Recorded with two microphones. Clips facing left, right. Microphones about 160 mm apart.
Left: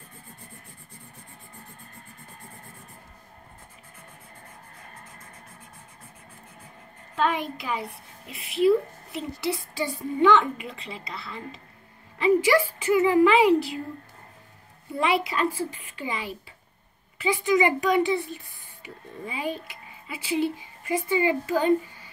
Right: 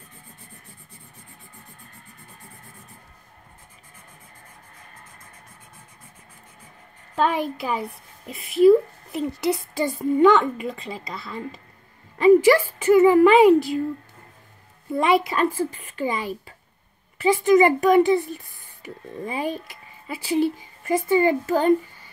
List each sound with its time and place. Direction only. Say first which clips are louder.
7.2 s a woman's voice: right 4 dB; 40° right (ahead or behind)
15.0 s a woman's voice: right 5 dB; 45° right (ahead or behind)